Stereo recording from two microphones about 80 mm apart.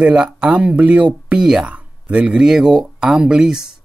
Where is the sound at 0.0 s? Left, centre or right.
Centre.